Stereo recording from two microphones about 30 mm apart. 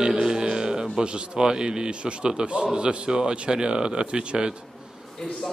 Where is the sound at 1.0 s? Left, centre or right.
Right.